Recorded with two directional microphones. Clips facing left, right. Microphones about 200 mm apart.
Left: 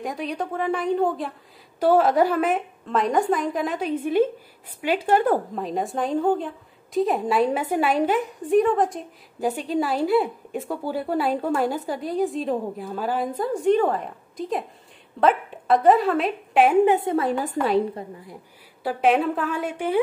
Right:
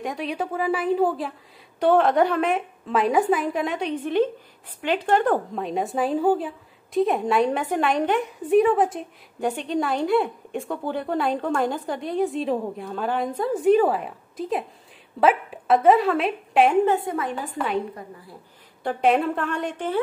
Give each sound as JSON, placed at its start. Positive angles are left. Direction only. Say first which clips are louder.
{"t": 0.0, "sound": "a woman's voice", "louder": "even", "side_deg": 0}
{"t": 16.8, "sound": "a woman's voice", "louder": "left 2 dB", "side_deg": 20}
{"t": 17.1, "sound": "a woman's voice", "louder": "left 5 dB", "side_deg": 35}
{"t": 18.8, "sound": "speech", "louder": "even", "side_deg": 5}